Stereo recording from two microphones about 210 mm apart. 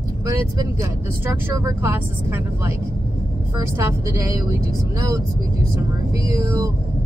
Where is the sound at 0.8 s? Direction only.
10° right (ahead or behind).